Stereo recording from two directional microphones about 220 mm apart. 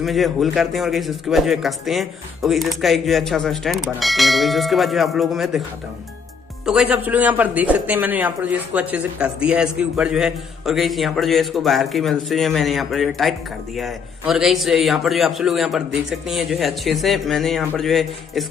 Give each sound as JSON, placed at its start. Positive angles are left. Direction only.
{"t": 0.0, "sound": "speech", "side_deg": 0}
{"t": 6.6, "sound": "speech", "side_deg": 0}